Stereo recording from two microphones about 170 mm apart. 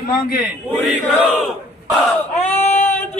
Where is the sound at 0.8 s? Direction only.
Centre (ahead or behind).